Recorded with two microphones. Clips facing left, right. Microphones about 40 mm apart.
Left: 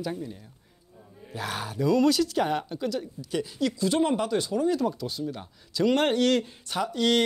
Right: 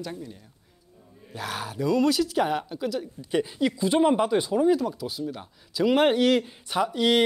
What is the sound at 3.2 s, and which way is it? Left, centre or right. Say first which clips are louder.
Speech: right 5 dB; right.